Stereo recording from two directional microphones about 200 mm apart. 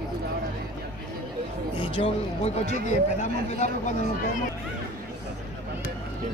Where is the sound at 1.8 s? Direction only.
25° left (ahead or behind).